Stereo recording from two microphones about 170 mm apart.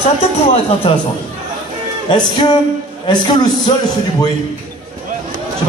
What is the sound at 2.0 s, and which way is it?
Speech, 25° left (ahead or behind).